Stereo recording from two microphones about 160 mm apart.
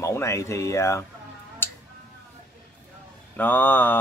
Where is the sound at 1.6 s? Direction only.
15° left (ahead or behind).